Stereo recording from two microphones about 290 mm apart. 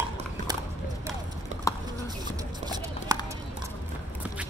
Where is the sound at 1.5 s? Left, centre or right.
Right.